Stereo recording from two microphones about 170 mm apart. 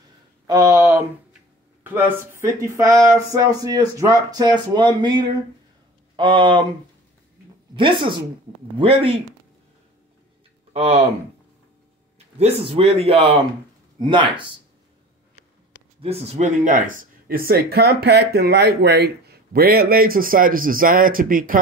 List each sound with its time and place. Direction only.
0.5 s a sound: 20° right (ahead or behind)
2.0 s speech: 15° right (ahead or behind); by 6.7 s 30° right (ahead or behind)
7.7 s a man's voice: 30° right (ahead or behind)
10.7 s speech: 35° right (ahead or behind)
12.4 s a man's voice: 35° right (ahead or behind)
16.0 s speech: 35° right (ahead or behind); by 21.5 s 55° right (ahead or behind)